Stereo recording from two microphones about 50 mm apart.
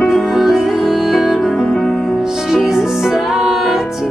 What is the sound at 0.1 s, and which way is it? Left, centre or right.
Music, centre.